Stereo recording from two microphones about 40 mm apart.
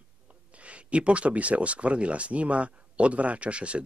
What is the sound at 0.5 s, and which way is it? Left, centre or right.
Speech, right.